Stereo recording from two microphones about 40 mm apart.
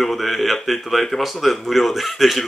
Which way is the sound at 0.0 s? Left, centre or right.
Centre.